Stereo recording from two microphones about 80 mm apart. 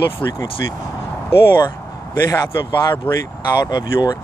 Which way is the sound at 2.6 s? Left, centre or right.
Left.